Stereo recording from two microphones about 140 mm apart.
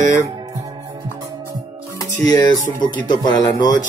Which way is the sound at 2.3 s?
30° left (ahead or behind).